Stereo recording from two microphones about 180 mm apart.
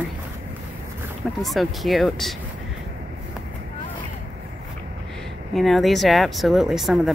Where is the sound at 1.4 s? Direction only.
Centre (ahead or behind).